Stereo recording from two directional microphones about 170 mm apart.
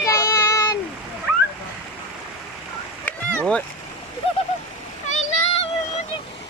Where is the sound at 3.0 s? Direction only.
5° left (ahead or behind).